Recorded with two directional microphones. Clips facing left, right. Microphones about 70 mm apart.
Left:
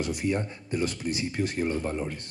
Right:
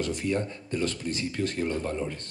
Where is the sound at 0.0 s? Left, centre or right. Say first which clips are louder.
Even; centre.